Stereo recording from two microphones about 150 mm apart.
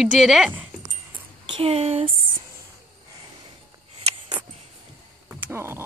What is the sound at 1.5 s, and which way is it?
Speech, 40° right (ahead or behind).